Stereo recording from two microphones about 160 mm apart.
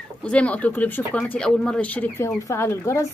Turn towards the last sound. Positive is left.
turn(degrees=15)  # may be behind; listen again after turning